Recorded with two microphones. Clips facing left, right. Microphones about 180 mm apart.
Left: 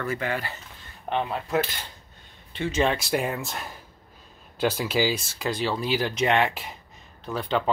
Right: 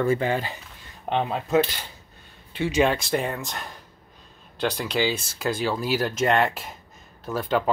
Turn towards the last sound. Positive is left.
turn(degrees=-5)  # may be behind; listen again after turning